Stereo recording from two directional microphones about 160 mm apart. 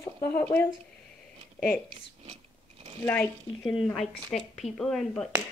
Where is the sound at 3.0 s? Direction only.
5° left (ahead or behind).